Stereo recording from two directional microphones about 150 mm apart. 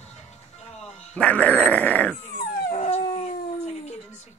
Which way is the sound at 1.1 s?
10° left (ahead or behind).